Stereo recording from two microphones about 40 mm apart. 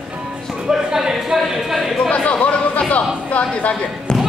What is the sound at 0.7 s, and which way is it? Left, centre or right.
A man's voice, centre.